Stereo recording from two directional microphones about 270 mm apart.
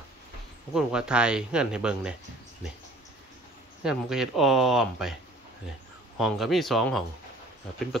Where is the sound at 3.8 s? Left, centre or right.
Centre.